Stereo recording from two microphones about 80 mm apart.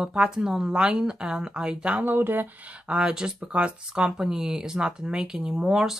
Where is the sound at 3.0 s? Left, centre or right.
Centre.